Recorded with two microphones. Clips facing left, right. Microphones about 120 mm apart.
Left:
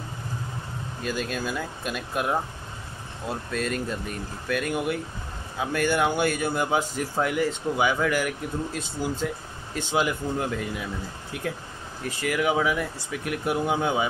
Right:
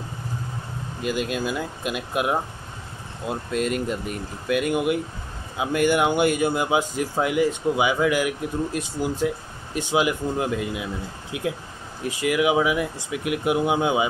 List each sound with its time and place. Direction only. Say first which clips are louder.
1.0 s speech: right 4 dB; 15° right (ahead or behind)
12.1 s speech: right 4 dB; 10° right (ahead or behind)